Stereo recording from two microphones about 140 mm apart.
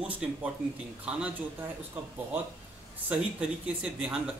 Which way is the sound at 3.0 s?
10° right (ahead or behind).